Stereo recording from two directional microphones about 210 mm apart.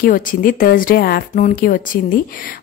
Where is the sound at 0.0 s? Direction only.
40° left (ahead or behind).